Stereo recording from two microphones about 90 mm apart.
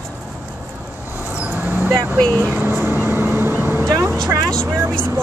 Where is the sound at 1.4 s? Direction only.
20° right (ahead or behind).